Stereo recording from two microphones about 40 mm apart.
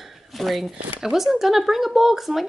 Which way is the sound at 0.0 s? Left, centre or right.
Centre.